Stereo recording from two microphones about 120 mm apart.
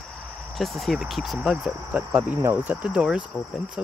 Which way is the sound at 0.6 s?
Centre (ahead or behind).